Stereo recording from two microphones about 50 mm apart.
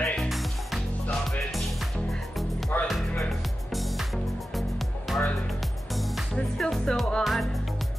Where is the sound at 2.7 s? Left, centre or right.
Left.